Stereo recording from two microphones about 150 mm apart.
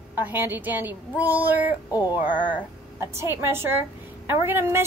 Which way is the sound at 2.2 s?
10° right (ahead or behind).